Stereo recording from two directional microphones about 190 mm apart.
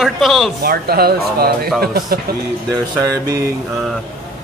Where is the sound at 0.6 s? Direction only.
55° right (ahead or behind).